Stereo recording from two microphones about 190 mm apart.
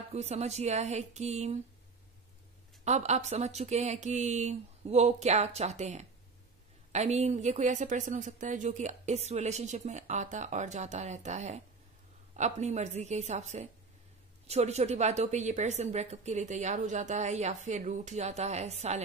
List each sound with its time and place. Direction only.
0.1 s a woman's voice: 35° right (ahead or behind)
2.8 s a woman's voice: 35° right (ahead or behind)